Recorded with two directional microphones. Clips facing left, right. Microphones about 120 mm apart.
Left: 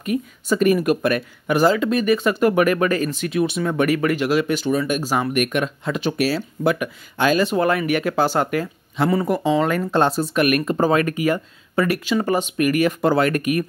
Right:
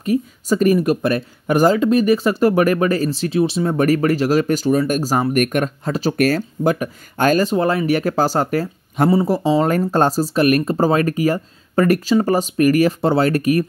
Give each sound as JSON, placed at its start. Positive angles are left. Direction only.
{"t": 0.0, "sound": "speech", "side_deg": -35}
{"t": 7.5, "sound": "speech", "side_deg": -30}